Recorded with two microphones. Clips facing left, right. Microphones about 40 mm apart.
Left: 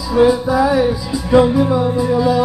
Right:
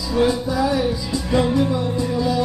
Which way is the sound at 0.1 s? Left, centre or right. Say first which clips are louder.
Left 7 dB; centre.